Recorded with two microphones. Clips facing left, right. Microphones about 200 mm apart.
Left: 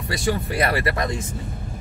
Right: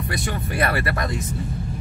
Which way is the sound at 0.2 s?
25° left (ahead or behind).